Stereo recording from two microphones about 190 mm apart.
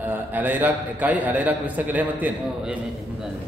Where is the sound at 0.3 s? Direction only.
10° right (ahead or behind).